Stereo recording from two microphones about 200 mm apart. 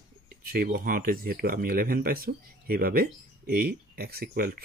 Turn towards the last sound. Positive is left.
turn(degrees=-50)  # may be behind; listen again after turning